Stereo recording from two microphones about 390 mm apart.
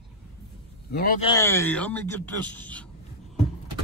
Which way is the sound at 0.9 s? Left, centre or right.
Left.